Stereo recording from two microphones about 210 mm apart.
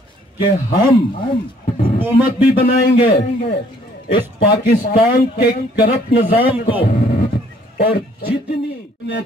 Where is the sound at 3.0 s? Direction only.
50° left (ahead or behind).